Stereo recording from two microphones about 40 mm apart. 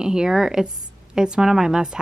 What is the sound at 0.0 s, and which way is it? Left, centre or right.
A woman's voice, centre.